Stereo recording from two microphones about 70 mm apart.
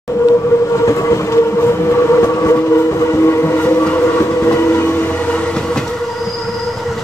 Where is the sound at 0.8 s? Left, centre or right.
Left.